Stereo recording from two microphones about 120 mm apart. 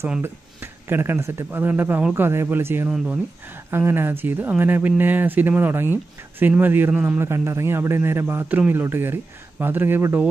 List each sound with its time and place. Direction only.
0.2 s a man's voice: 20° right (ahead or behind)